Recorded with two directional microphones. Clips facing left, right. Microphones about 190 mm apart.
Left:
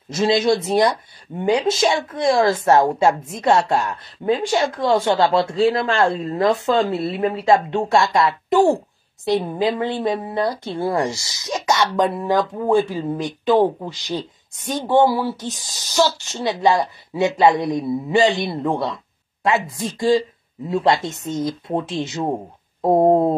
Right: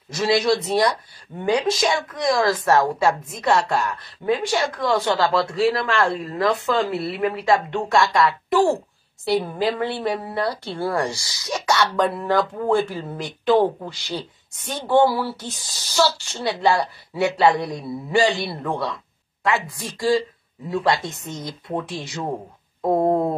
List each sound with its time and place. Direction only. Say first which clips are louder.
0.1 s a woman's voice: left 2 dB; 25° left (ahead or behind)